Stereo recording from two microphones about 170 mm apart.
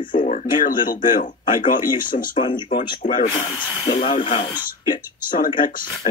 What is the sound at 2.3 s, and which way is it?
Speech, 30° left (ahead or behind).